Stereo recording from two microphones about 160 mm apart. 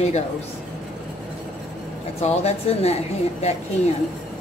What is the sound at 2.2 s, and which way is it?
Speech, 40° left (ahead or behind).